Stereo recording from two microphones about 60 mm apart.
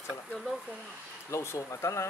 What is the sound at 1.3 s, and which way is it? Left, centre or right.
Speech, left.